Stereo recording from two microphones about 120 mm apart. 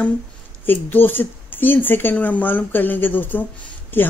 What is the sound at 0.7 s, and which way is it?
Speech, 15° left (ahead or behind).